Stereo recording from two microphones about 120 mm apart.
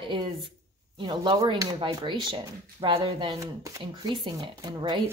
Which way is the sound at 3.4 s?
25° right (ahead or behind).